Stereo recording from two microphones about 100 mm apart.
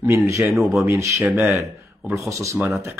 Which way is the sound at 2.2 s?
30° right (ahead or behind).